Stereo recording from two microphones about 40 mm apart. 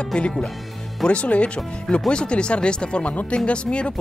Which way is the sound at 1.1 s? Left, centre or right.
Left.